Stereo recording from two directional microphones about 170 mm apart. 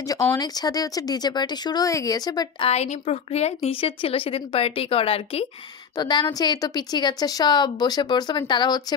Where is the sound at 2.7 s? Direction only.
40° left (ahead or behind).